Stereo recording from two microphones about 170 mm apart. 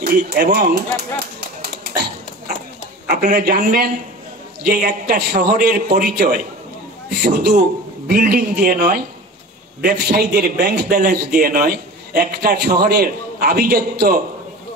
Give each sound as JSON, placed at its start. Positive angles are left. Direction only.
{"t": 0.0, "sound": "speech", "side_deg": -65}
{"t": 3.1, "sound": "a man's voice", "side_deg": -50}